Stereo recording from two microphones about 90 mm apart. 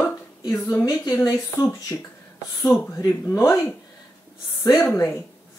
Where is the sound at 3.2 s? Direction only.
30° left (ahead or behind).